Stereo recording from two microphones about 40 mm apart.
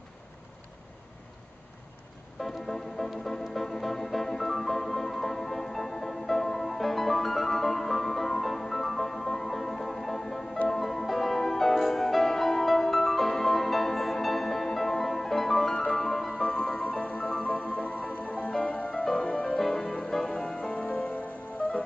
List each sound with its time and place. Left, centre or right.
2.4 s music: centre
15.7 s music: centre
16.3 s music: left
16.8 s music: left
20.7 s music: left